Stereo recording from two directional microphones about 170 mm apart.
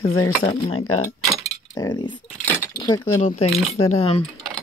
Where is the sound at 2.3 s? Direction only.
10° left (ahead or behind).